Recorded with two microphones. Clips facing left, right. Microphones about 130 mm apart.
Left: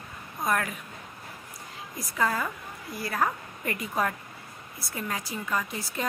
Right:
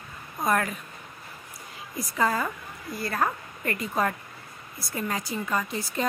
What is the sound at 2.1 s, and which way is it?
A woman's voice, centre (ahead or behind).